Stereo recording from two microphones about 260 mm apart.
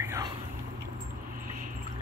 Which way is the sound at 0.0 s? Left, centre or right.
Centre.